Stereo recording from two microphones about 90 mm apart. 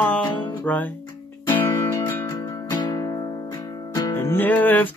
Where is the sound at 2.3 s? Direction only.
45° left (ahead or behind).